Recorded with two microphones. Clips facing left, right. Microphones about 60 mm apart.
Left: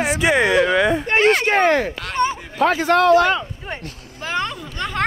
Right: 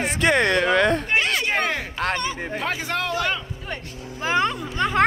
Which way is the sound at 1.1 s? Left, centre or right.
Left.